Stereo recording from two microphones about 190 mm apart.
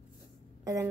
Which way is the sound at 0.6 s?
15° right (ahead or behind).